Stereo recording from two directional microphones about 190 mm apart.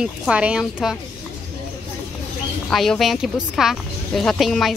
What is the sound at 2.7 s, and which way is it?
A woman's voice, centre (ahead or behind).